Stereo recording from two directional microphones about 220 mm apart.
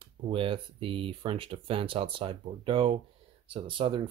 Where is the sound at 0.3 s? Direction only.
25° right (ahead or behind).